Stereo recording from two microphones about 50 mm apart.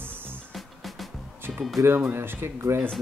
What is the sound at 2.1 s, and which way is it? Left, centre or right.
Speech, right.